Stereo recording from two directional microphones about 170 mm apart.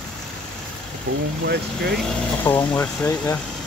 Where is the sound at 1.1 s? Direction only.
80° right.